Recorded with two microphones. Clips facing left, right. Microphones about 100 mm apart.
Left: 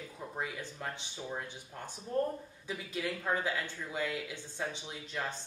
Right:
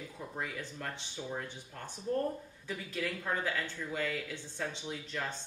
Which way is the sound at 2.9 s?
15° left (ahead or behind).